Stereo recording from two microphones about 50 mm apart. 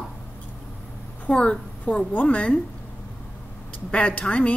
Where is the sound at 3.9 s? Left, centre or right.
Left.